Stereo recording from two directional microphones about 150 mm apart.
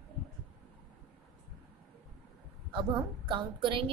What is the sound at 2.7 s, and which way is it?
A woman's voice, 30° right (ahead or behind).